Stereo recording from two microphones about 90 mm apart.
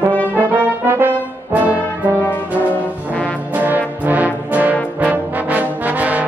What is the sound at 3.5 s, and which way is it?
Brass instrument, 20° right (ahead or behind).